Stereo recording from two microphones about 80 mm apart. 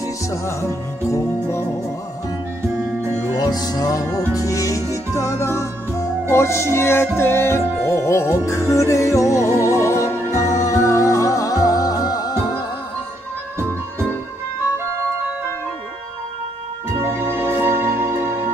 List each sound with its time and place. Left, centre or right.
0.0 s music: left
3.0 s music: right
3.3 s music: left
17.0 s music: right